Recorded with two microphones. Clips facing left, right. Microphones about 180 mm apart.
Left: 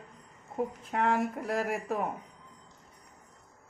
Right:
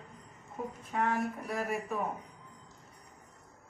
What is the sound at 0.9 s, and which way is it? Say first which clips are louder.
Speech: left 2 dB; 80° left.